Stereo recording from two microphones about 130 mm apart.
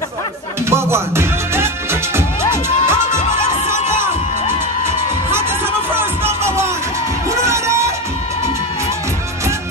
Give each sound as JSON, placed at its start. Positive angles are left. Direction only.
{"t": 0.7, "sound": "music", "side_deg": -20}
{"t": 6.4, "sound": "music", "side_deg": -20}